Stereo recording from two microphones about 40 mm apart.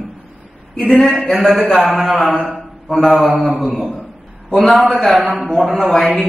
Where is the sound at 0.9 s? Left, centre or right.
Centre.